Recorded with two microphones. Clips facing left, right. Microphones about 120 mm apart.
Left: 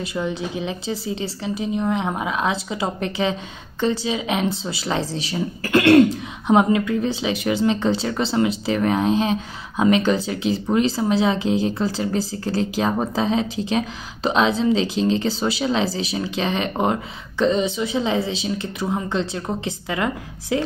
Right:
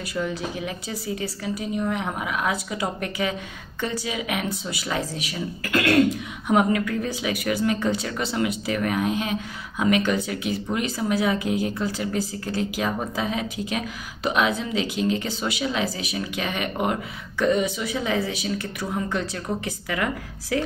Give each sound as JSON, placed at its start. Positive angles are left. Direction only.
{"t": 0.0, "sound": "speech", "side_deg": 20}